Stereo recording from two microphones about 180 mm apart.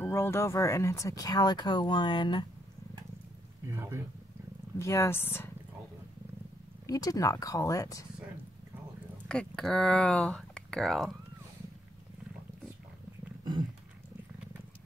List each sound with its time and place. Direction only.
0.0 s speech: 15° left (ahead or behind)
3.7 s speech: 15° right (ahead or behind)
4.7 s speech: 15° left (ahead or behind)
6.9 s speech: 20° left (ahead or behind)
9.3 s speech: 5° left (ahead or behind)